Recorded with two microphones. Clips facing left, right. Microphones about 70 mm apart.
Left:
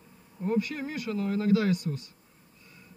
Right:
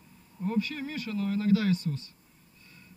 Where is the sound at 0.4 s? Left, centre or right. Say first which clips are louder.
Left 2 dB; left.